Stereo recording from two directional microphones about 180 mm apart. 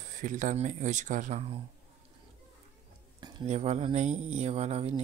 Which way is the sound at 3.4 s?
35° right (ahead or behind).